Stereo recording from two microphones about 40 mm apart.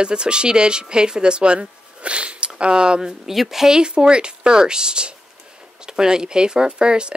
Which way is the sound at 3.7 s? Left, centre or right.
Right.